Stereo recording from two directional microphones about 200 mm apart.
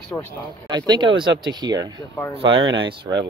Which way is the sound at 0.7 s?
20° right (ahead or behind).